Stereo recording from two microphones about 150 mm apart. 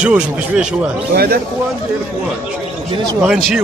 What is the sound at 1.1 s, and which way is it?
Speech, 90° right.